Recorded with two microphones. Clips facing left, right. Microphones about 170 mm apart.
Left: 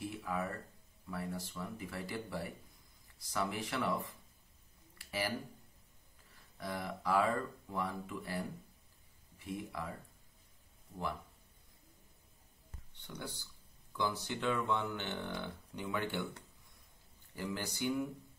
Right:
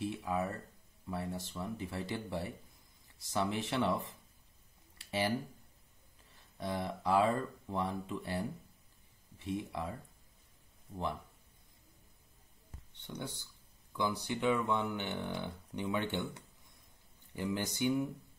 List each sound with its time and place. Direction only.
0.0 s a sound: 25° right (ahead or behind)
1.0 s speech: 25° right (ahead or behind)
4.9 s a sound: 25° right (ahead or behind)
6.6 s speech: 25° right (ahead or behind)
9.4 s speech: 25° right (ahead or behind)
13.0 s speech: 20° right (ahead or behind)
17.4 s speech: 20° right (ahead or behind)